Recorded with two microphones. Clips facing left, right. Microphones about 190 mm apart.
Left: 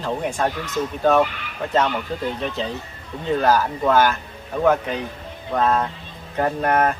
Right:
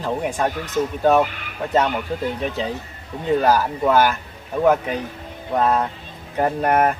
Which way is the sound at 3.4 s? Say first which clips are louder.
Left 2 dB; 10° right (ahead or behind).